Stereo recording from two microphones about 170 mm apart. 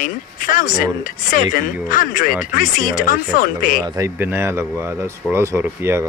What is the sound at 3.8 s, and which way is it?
Speech, 20° right (ahead or behind).